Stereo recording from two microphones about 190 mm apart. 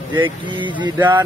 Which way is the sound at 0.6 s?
25° right (ahead or behind).